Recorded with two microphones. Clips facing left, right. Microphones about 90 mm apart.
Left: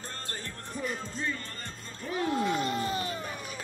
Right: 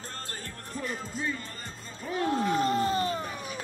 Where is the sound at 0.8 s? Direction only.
5° right (ahead or behind).